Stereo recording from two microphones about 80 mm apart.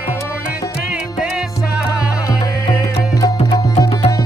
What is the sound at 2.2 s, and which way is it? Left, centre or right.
Music, left.